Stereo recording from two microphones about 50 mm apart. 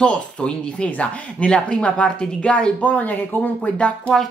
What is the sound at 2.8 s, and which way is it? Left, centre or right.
Speech, left.